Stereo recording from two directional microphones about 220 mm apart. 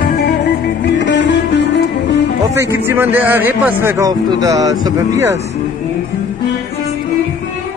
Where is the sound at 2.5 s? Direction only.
15° right (ahead or behind).